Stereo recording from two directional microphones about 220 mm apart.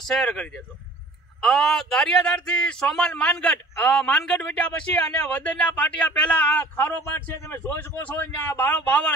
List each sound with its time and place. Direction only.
0.0 s speech: centre (ahead or behind)